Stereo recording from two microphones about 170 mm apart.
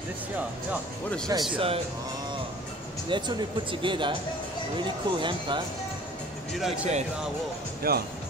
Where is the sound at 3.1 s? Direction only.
30° right (ahead or behind).